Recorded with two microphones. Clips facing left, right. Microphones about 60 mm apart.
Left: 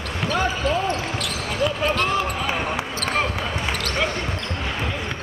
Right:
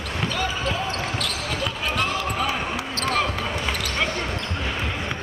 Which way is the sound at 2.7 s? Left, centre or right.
Left.